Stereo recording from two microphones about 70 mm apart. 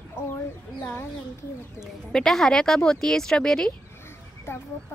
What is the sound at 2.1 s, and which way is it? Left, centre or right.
Speech, centre.